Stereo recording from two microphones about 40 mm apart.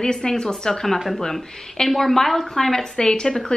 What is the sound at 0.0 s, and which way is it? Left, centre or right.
Speech, centre.